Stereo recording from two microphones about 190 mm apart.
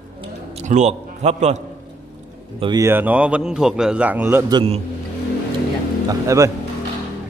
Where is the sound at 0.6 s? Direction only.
35° right (ahead or behind).